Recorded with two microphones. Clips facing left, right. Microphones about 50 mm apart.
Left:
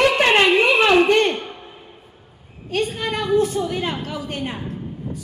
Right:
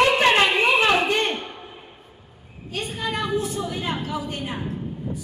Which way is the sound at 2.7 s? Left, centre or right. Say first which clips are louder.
Left 5 dB; left.